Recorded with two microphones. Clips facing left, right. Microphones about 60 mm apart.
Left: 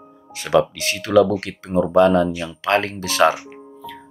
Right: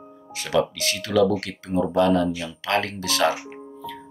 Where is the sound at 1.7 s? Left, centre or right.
Left.